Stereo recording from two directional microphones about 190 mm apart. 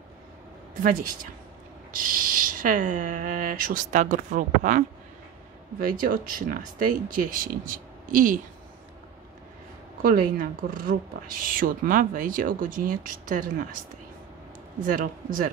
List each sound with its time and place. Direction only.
0.8 s speech: 45° right (ahead or behind)
10.0 s speech: 45° right (ahead or behind)
14.9 s speech: 45° right (ahead or behind)